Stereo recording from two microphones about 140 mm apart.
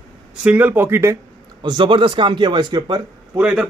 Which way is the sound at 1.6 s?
35° right (ahead or behind).